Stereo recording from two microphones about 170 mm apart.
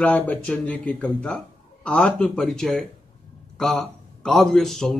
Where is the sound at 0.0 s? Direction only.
10° left (ahead or behind).